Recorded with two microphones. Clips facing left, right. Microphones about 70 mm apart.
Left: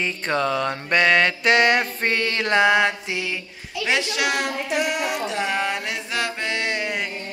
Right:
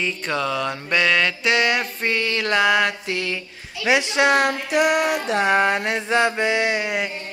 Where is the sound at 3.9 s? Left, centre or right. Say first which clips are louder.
Right 5 dB; right.